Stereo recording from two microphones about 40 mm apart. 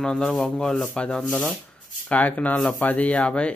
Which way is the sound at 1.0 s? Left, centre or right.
Left.